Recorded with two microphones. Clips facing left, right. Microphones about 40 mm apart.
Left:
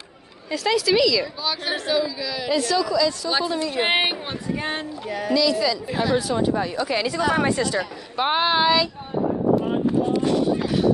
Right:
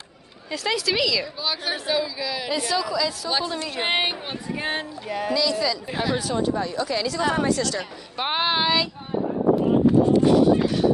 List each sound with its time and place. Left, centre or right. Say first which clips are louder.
0.5 s a woman's voice: left 4 dB; centre
3.3 s a woman's voice: left 3 dB; centre
4.6 s a woman's voice: even; centre; by 7.8 s left
8.2 s a woman's voice: left 3 dB; centre
9.8 s a sound: right 5 dB; centre